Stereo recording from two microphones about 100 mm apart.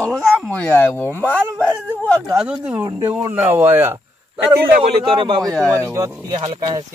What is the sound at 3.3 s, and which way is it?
Speech, 25° right (ahead or behind).